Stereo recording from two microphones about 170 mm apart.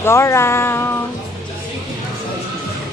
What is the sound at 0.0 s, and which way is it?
Music, 15° left (ahead or behind).